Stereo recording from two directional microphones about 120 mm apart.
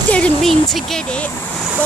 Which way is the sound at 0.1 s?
5° left (ahead or behind).